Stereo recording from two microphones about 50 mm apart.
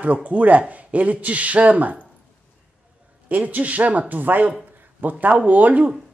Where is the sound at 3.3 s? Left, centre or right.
Right.